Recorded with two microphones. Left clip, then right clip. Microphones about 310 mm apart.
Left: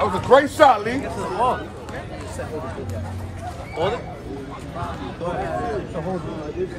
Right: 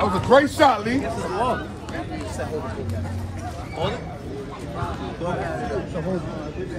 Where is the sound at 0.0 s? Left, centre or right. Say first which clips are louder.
Left 1 dB; left.